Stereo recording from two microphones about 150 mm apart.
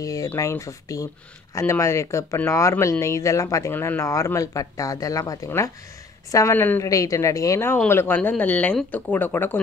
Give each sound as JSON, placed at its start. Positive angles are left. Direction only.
{"t": 0.0, "sound": "speech", "side_deg": 25}